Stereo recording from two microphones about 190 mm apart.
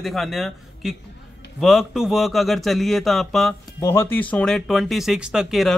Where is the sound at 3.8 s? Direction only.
15° left (ahead or behind).